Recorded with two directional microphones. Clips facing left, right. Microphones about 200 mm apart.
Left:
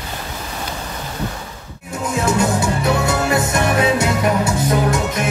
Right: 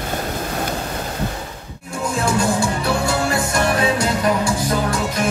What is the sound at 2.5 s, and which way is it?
Music, 20° left (ahead or behind).